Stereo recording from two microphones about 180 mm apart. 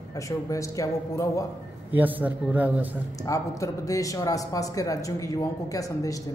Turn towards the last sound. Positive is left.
turn(degrees=20)  # may be behind; listen again after turning